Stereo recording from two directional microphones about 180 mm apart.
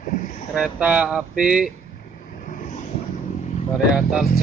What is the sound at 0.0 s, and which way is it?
Boat, 45° left (ahead or behind).